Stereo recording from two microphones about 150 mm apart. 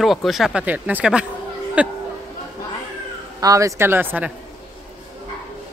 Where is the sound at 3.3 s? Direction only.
25° right (ahead or behind).